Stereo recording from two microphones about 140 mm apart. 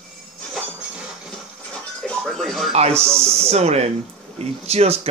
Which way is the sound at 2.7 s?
50° right (ahead or behind).